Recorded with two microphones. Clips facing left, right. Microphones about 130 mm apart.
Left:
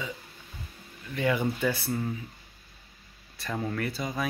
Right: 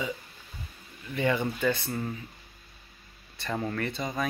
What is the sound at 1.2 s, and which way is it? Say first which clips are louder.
Speech: even; 5° left (ahead or behind).